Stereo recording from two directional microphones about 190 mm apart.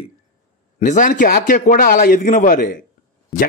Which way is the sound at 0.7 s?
40° left (ahead or behind).